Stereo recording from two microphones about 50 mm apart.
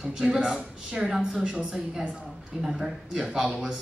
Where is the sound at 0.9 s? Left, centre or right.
Centre.